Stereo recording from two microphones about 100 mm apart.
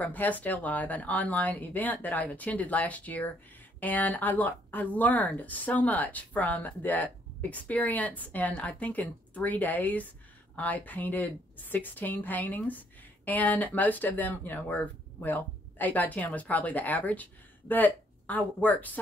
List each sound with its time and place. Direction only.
0.0 s a woman's voice: 15° left (ahead or behind)